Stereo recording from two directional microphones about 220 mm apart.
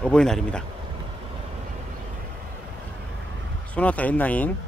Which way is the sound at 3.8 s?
5° left (ahead or behind).